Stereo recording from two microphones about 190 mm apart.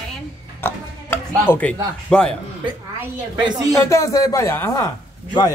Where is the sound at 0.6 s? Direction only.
10° left (ahead or behind).